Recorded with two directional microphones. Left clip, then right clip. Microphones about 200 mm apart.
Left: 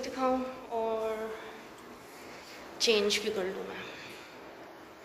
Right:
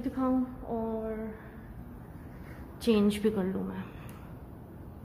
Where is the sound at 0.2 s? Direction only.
15° right (ahead or behind).